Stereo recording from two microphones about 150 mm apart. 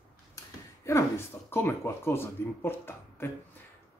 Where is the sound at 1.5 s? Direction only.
15° left (ahead or behind).